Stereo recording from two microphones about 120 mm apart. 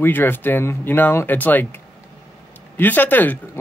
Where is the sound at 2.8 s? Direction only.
15° left (ahead or behind).